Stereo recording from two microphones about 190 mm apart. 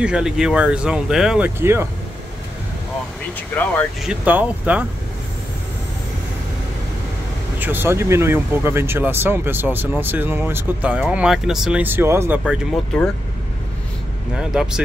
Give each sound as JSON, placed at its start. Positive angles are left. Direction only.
{"t": 0.0, "sound": "speech", "side_deg": -5}
{"t": 3.3, "sound": "speech", "side_deg": 10}
{"t": 4.0, "sound": "speech", "side_deg": -5}
{"t": 7.5, "sound": "speech", "side_deg": -10}
{"t": 12.9, "sound": "speech", "side_deg": 5}
{"t": 14.3, "sound": "speech", "side_deg": -5}